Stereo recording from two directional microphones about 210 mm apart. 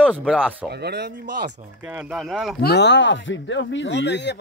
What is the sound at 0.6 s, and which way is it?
Speech, 50° right (ahead or behind).